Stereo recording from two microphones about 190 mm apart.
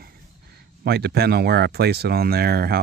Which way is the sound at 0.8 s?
55° right (ahead or behind).